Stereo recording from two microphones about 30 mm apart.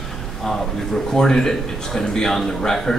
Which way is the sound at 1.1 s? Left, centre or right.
Left.